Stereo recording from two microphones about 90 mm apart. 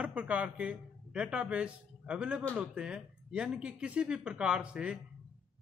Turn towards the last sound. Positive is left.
turn(degrees=-10)  # may be behind; listen again after turning